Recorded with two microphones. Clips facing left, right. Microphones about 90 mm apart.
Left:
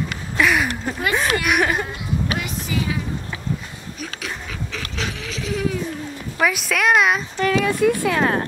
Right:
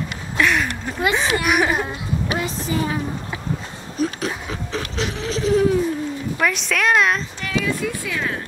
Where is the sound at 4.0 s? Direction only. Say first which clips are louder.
Right 9 dB; 35° right (ahead or behind).